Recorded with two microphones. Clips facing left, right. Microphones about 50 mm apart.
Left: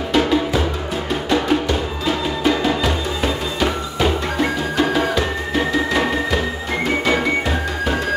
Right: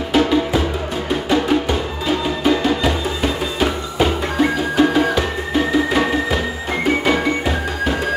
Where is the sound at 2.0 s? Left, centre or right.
Centre.